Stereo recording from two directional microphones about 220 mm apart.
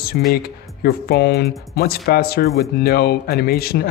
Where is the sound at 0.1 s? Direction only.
45° left (ahead or behind).